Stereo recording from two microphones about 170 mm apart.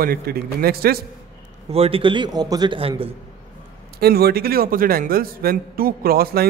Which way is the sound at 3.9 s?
65° right (ahead or behind).